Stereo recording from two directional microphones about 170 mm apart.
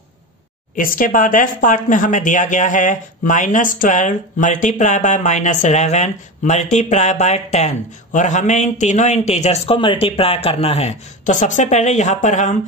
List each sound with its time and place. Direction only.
0.7 s speech: 55° left (ahead or behind)